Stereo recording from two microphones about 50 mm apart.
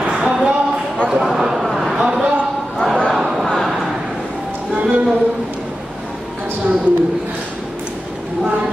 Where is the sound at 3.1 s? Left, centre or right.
Centre.